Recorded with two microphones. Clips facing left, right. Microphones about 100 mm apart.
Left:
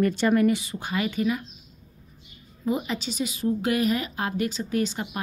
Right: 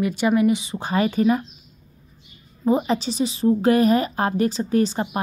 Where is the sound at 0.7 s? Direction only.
35° right (ahead or behind).